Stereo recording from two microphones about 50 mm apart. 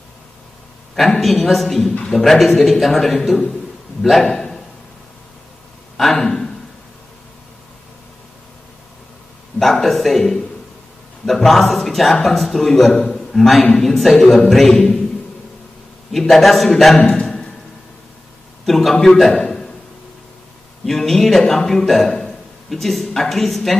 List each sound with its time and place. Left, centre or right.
1.2 s a man's voice: centre
4.2 s a sound: centre
5.9 s speech: centre
9.6 s a man's voice: centre
16.1 s a man's voice: centre
17.1 s a sound: centre
18.7 s a man's voice: centre
20.8 s a man's voice: centre